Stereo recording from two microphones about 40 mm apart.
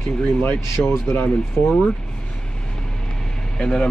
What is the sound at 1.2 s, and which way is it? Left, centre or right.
Speech, left.